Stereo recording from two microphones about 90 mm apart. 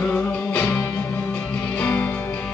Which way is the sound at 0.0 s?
15° left (ahead or behind).